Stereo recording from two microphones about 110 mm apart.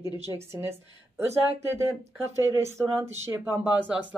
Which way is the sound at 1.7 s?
25° right (ahead or behind).